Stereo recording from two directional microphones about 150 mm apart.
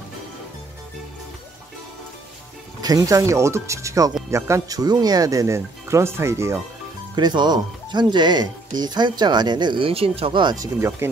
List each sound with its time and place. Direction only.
2.8 s speech: 25° right (ahead or behind)
7.2 s speech: 30° right (ahead or behind)